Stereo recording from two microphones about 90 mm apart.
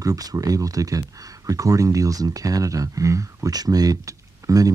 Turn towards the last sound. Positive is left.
turn(degrees=-40)  # may be behind; listen again after turning